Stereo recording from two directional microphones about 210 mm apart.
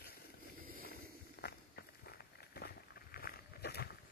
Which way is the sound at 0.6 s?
45° right (ahead or behind).